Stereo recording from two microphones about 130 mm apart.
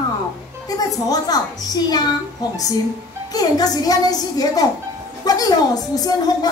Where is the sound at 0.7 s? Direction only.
30° left (ahead or behind).